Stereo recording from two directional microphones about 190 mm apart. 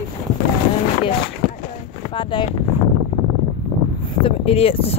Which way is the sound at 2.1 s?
25° left (ahead or behind).